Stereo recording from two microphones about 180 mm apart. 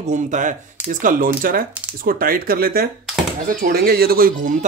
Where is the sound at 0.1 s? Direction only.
45° right (ahead or behind).